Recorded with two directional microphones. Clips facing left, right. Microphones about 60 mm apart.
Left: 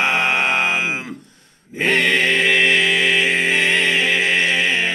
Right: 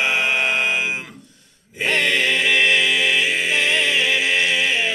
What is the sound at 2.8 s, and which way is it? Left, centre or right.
Mantra, left.